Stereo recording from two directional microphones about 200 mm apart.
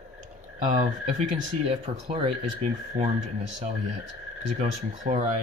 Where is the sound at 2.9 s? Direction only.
40° right (ahead or behind).